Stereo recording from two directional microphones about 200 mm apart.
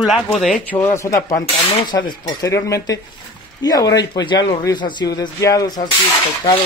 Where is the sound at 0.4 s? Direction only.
5° left (ahead or behind).